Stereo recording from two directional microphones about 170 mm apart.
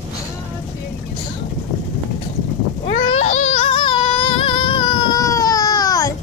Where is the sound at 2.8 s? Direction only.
40° left (ahead or behind); by 6.1 s 20° left (ahead or behind).